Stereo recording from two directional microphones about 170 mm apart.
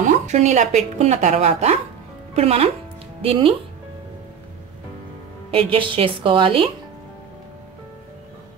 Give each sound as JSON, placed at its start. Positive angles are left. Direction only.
{"t": 0.0, "sound": "speech", "side_deg": -45}
{"t": 5.5, "sound": "speech", "side_deg": -30}